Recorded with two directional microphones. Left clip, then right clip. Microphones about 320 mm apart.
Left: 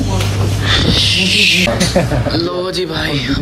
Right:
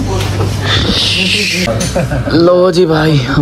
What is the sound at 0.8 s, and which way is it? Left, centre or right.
Music, centre.